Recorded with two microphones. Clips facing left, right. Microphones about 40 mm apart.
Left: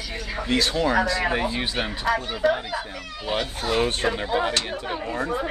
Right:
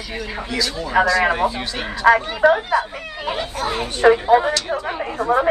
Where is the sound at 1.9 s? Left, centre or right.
Right.